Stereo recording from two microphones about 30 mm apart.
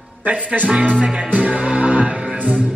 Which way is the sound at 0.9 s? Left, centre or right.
Right.